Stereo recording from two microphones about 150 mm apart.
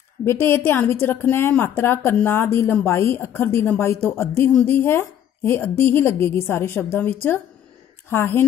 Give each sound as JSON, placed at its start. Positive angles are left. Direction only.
{"t": 0.2, "sound": "a woman's voice", "side_deg": 15}